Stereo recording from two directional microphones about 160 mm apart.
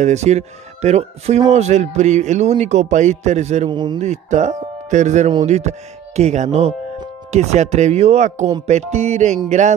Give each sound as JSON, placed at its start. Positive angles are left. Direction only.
{"t": 0.0, "sound": "speech", "side_deg": -45}
{"t": 3.7, "sound": "a man's voice", "side_deg": -30}
{"t": 4.0, "sound": "speech", "side_deg": -45}